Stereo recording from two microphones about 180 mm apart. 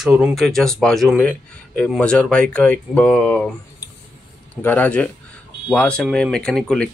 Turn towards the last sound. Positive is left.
turn(degrees=5)  # may be behind; listen again after turning